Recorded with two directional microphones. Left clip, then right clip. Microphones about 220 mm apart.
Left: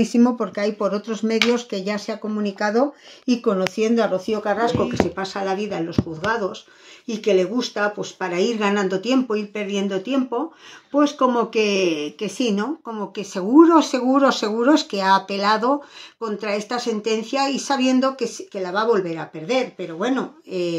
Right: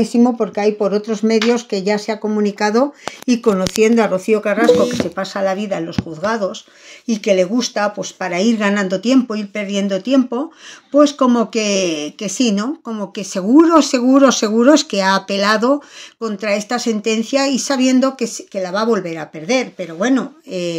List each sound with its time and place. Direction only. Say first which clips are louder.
0.0 s speech: right 4 dB; 20° right (ahead or behind)
5.1 s speech: right 6 dB; 45° right (ahead or behind)